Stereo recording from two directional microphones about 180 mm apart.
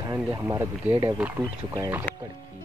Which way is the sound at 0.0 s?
20° right (ahead or behind).